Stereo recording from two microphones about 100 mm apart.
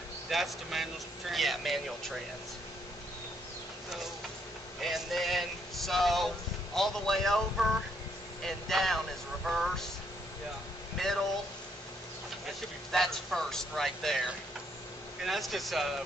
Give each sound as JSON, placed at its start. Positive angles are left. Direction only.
{"t": 0.3, "sound": "speech", "side_deg": 0}
{"t": 4.8, "sound": "speech", "side_deg": 0}
{"t": 11.0, "sound": "speech", "side_deg": 5}
{"t": 12.9, "sound": "speech", "side_deg": 5}
{"t": 15.2, "sound": "speech", "side_deg": 0}